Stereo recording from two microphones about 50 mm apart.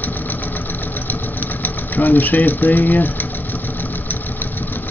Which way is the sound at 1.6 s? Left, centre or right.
Left.